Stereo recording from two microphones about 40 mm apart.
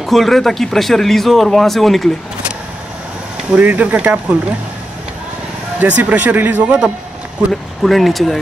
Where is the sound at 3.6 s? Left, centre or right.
Right.